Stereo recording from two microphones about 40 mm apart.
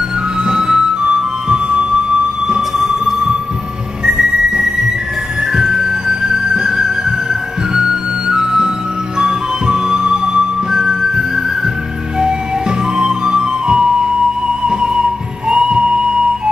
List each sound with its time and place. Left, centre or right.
0.4 s music: centre
4.0 s whistle: centre
5.5 s music: centre